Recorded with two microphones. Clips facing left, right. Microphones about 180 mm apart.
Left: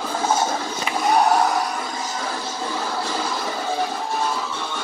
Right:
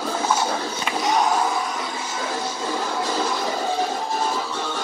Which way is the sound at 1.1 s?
65° left (ahead or behind).